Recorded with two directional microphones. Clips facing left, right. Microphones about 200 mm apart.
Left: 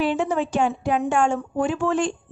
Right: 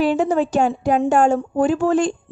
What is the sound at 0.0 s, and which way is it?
A woman's voice, 40° right (ahead or behind).